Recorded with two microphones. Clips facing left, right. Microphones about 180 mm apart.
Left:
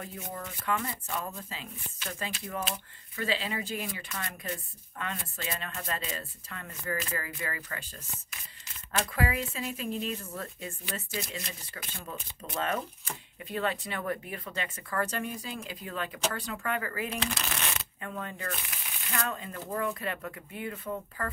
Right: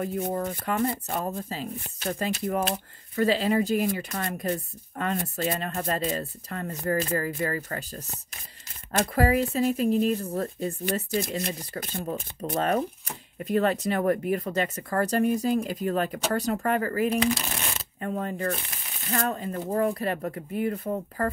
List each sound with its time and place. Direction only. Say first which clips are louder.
0.0 s speech: right 12 dB; 40° right (ahead or behind)
8.9 s speech: right 8 dB; 40° right (ahead or behind)